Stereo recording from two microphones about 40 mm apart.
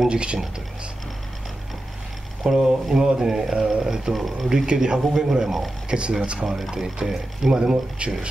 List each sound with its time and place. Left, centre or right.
0.1 s a man's voice: right
2.4 s a man's voice: centre
4.1 s speech: centre
4.6 s a man's voice: right
7.5 s a man's voice: right